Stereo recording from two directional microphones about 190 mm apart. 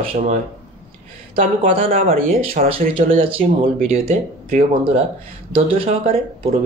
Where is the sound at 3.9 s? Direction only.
35° right (ahead or behind).